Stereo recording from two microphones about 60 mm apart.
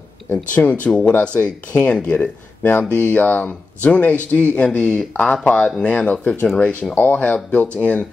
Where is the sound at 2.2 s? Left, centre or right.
Left.